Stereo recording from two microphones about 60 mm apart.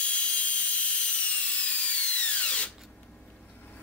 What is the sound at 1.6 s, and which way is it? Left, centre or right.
Drill, left.